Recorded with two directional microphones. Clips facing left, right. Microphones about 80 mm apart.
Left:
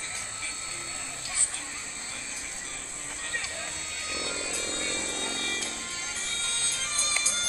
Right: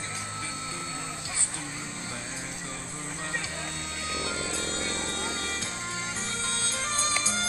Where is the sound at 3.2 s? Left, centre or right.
Right.